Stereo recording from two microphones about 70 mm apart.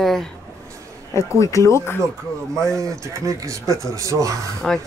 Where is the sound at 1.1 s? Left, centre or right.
Left.